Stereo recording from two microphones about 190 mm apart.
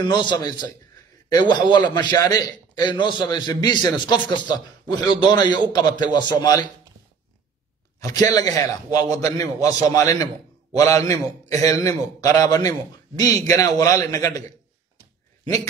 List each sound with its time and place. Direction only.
0.0 s a man's voice: 25° left (ahead or behind)
8.0 s a man's voice: 20° left (ahead or behind)